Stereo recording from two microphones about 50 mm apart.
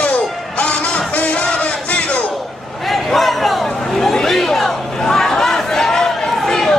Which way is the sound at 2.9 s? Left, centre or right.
Centre.